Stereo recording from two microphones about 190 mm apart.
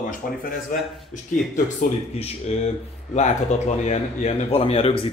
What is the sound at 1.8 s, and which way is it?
Speech, 35° left (ahead or behind).